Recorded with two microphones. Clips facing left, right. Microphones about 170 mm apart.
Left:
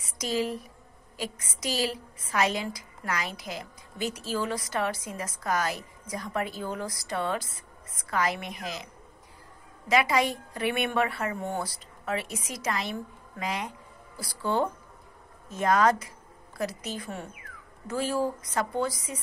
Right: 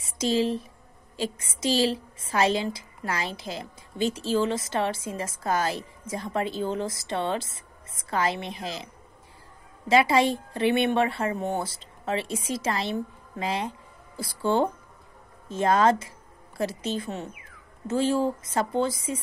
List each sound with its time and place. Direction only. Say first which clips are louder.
0.0 s a woman's voice: right 5 dB; 25° right (ahead or behind)